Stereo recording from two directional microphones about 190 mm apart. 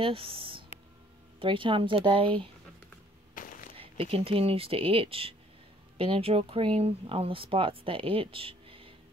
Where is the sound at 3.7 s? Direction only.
30° right (ahead or behind).